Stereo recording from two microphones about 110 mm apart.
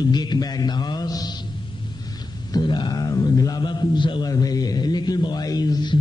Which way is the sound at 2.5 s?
45° left (ahead or behind).